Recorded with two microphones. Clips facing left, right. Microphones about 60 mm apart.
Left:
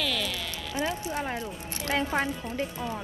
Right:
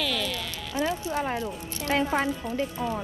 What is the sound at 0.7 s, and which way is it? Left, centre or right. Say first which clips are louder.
Speech: right 3 dB; left.